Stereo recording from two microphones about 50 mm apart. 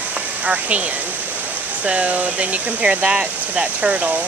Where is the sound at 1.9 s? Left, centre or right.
Right.